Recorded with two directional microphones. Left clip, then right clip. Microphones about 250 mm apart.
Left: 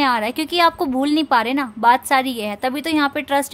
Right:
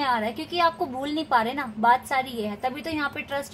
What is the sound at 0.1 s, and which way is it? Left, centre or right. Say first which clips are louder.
A woman's voice: left 6 dB; left.